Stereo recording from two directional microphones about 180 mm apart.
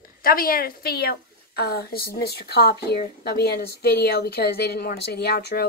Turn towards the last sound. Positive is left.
turn(degrees=65)  # may be behind; listen again after turning